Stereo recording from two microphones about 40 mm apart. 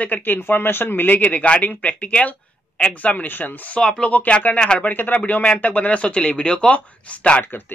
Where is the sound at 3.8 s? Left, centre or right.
Left.